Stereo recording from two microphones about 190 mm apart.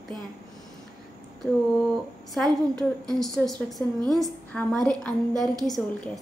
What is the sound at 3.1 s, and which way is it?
A woman's voice, centre (ahead or behind).